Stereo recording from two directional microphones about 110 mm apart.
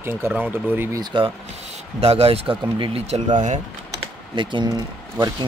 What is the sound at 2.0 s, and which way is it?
Speech, 65° right (ahead or behind).